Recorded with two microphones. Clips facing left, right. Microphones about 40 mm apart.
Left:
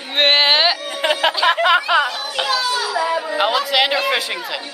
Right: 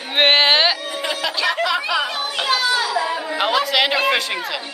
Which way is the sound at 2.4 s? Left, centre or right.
Right.